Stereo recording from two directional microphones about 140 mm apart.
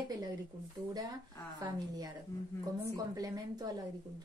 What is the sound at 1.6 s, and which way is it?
Speech, 25° right (ahead or behind).